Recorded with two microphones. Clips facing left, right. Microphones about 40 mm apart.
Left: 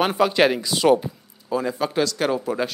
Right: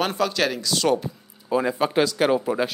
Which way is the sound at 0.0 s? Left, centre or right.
Centre.